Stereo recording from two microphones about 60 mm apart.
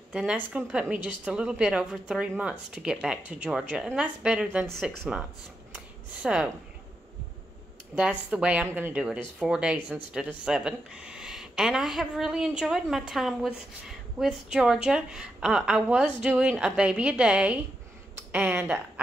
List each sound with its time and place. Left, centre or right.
0.7 s a woman's voice: right
3.3 s a woman's voice: right
6.2 s a woman's voice: centre
7.9 s a woman's voice: centre